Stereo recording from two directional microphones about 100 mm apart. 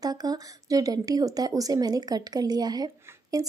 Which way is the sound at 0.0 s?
40° right (ahead or behind).